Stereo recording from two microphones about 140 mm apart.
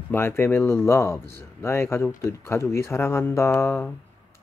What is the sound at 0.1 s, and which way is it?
Speech, 15° left (ahead or behind).